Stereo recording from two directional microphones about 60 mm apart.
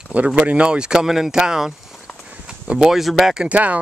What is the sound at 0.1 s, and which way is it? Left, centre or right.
Speech, right.